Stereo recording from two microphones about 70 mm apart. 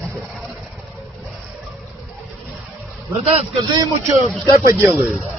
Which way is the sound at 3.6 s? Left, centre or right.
Right.